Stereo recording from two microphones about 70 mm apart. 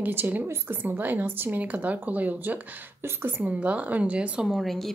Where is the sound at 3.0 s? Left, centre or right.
Right.